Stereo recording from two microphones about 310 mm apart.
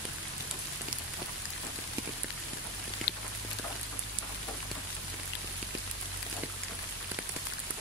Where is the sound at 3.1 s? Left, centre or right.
Left.